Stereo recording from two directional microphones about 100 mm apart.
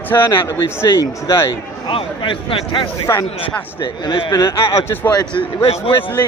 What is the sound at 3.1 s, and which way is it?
Speech, 30° left (ahead or behind).